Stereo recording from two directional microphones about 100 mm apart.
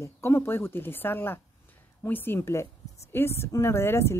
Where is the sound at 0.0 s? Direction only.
30° left (ahead or behind).